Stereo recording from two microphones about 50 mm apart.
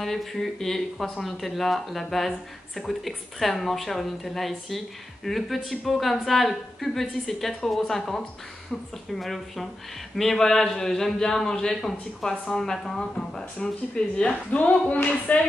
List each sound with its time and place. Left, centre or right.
0.0 s a man's voice: centre
14.5 s speech: left